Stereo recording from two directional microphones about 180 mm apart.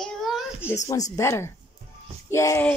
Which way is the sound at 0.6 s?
10° right (ahead or behind).